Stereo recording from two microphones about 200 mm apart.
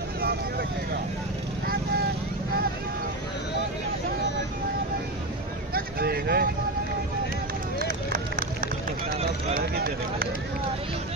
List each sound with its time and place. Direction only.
5.8 s vehicle: 50° right (ahead or behind)
7.8 s run: 45° right (ahead or behind)
9.5 s run: 50° right (ahead or behind)